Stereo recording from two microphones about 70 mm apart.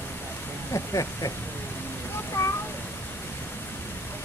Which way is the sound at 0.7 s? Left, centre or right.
Left.